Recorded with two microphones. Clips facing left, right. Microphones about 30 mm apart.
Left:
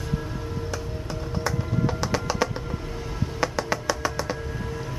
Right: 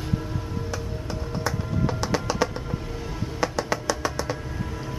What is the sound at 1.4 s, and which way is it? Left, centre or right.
Music, centre.